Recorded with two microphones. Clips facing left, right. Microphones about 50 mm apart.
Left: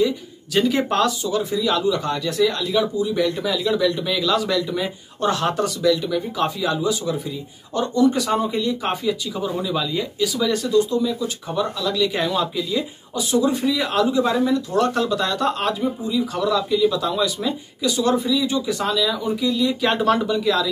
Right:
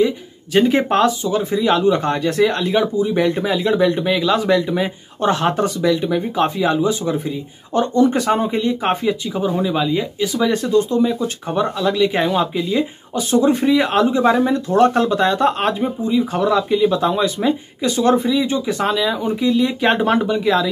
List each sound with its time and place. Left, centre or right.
0.0 s speech: right